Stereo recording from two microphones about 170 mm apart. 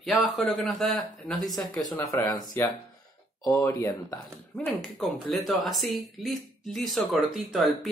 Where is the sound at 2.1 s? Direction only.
25° left (ahead or behind).